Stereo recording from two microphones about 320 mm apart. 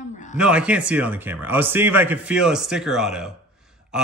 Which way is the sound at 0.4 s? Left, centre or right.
Centre.